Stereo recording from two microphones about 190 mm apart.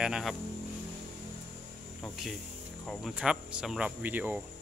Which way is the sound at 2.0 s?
Centre (ahead or behind).